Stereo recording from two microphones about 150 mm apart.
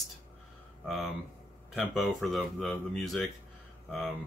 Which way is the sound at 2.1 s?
Centre (ahead or behind).